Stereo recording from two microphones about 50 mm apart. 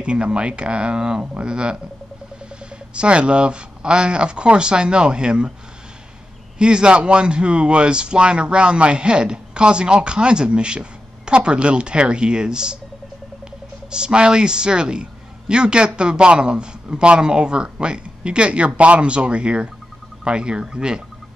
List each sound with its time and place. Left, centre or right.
0.0 s speech: right
2.9 s speech: right
6.6 s speech: centre
13.8 s speech: centre